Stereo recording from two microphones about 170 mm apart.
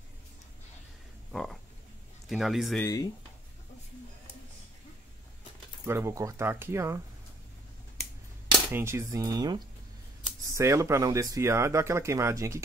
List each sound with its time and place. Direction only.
1.3 s frog: 5° left (ahead or behind)
2.2 s a man's voice: centre (ahead or behind)
2.8 s speech: 20° left (ahead or behind)
5.9 s speech: 15° right (ahead or behind)
8.7 s speech: 15° right (ahead or behind)